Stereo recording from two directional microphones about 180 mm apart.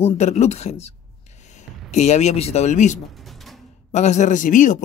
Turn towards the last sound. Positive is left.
turn(degrees=45)  # may be behind; listen again after turning